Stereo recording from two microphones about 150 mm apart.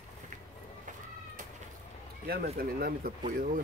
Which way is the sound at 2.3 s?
90° right.